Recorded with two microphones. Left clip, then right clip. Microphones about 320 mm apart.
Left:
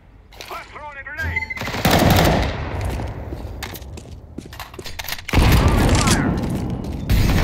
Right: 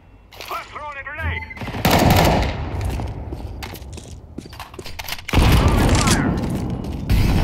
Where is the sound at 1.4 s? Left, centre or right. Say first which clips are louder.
Left 5 dB; centre.